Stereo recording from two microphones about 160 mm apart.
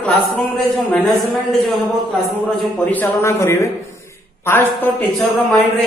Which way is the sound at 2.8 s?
10° left (ahead or behind).